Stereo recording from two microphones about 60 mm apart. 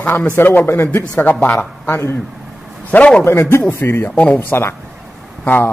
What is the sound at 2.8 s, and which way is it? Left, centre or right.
Speech, left.